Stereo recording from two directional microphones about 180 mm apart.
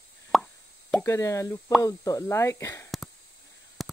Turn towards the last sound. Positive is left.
turn(degrees=0)  # may be behind; listen again after turning